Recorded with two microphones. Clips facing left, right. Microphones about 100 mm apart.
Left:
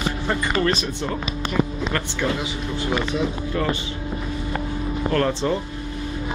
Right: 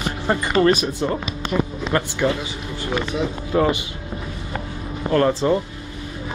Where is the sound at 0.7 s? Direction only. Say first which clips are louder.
Right 5 dB; 10° right (ahead or behind).